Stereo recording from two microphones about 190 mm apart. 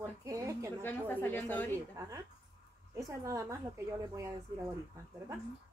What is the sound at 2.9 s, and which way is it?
Speech, 15° right (ahead or behind).